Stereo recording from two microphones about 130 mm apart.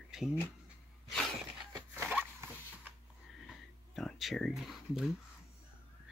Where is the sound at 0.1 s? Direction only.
5° right (ahead or behind).